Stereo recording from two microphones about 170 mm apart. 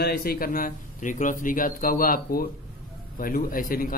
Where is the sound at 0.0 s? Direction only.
70° left (ahead or behind).